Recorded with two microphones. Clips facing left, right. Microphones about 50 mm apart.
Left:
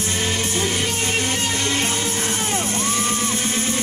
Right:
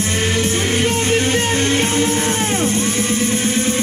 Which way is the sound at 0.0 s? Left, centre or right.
Right.